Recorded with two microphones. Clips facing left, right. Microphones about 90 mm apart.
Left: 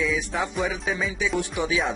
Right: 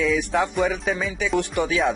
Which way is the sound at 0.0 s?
65° right (ahead or behind).